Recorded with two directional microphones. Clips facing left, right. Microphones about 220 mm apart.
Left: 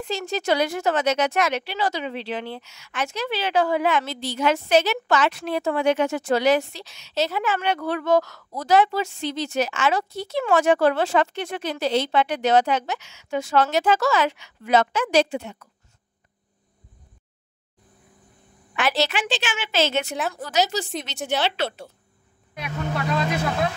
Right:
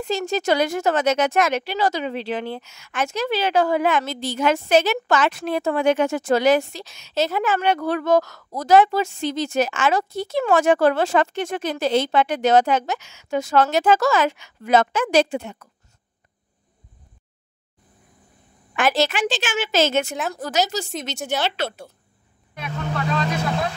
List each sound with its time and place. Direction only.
0.0 s speech: 45° right (ahead or behind)
18.8 s speech: 50° right (ahead or behind)